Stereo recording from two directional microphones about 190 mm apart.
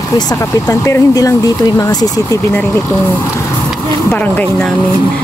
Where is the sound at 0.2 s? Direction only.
20° left (ahead or behind).